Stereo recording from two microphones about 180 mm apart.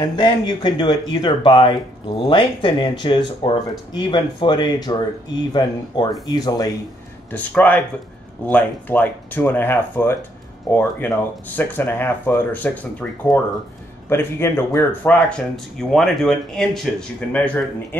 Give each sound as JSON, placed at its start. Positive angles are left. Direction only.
{"t": 0.0, "sound": "speech", "side_deg": 25}
{"t": 7.2, "sound": "speech", "side_deg": 10}